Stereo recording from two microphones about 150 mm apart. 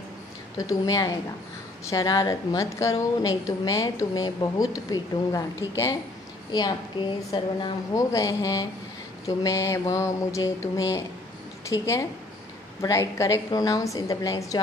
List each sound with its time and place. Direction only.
0.6 s a woman's voice: 25° left (ahead or behind)